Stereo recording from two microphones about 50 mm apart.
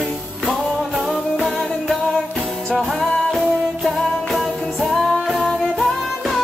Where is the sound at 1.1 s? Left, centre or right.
Centre.